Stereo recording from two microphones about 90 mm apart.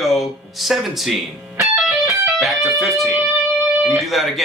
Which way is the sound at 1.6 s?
5° right (ahead or behind).